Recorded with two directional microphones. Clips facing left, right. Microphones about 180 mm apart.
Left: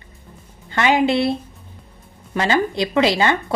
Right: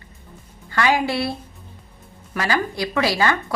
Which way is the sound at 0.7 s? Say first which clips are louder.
Left 3 dB; 20° left (ahead or behind).